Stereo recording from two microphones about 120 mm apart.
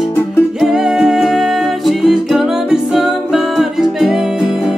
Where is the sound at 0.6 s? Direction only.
Centre (ahead or behind).